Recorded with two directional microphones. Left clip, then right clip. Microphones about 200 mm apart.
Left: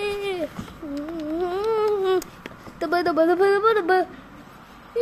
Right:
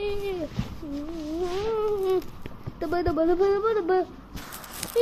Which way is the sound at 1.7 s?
35° left (ahead or behind).